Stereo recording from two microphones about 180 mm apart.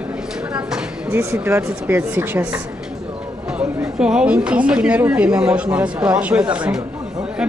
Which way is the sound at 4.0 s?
5° right (ahead or behind).